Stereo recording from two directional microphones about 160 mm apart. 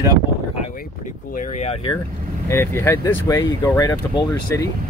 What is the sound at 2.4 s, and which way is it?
Speech, 15° left (ahead or behind).